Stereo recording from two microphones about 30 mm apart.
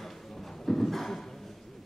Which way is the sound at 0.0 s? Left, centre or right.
Centre.